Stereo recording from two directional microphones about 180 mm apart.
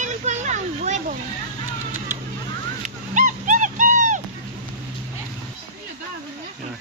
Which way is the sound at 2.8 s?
45° right (ahead or behind).